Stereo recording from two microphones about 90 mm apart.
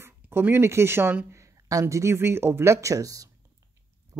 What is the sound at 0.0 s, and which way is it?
Speech, 25° right (ahead or behind).